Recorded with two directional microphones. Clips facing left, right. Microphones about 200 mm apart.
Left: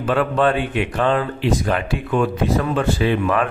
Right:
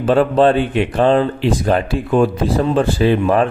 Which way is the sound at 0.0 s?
30° right (ahead or behind).